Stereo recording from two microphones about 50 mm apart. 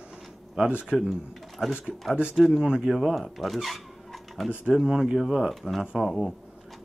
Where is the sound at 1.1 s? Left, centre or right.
Centre.